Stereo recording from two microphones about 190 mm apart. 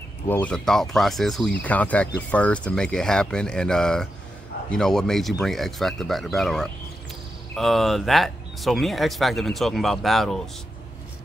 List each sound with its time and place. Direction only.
0.3 s speech: 5° left (ahead or behind)